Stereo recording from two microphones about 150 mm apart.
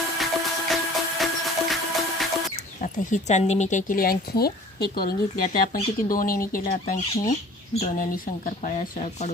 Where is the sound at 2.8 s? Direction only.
55° left (ahead or behind).